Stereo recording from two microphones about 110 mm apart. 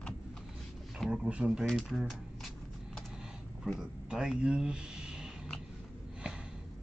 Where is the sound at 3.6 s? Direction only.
5° right (ahead or behind).